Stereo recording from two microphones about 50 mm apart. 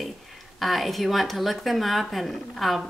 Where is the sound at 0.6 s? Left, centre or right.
Centre.